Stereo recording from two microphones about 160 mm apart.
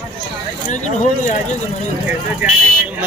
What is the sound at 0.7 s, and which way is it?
Speech, 50° left (ahead or behind).